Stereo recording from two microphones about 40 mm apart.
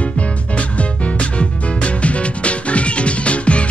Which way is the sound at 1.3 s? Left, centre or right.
Left.